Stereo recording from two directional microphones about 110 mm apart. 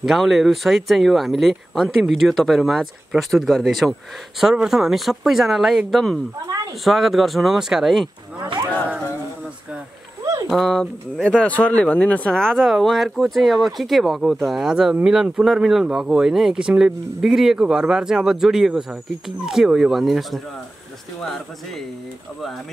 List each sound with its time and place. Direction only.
0.0 s speech: centre (ahead or behind)
6.4 s speech: 35° right (ahead or behind)
6.8 s speech: centre (ahead or behind)
10.5 s speech: centre (ahead or behind)